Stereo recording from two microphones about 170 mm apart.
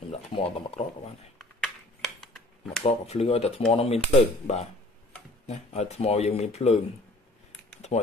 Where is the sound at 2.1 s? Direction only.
5° left (ahead or behind).